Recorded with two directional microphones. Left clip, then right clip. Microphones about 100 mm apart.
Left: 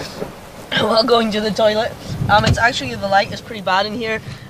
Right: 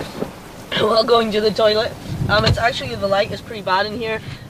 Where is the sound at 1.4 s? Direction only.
5° right (ahead or behind).